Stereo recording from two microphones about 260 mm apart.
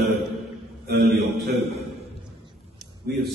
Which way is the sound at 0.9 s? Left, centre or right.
Right.